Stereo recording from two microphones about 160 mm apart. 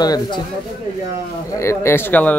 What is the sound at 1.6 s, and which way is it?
Speech, 15° left (ahead or behind).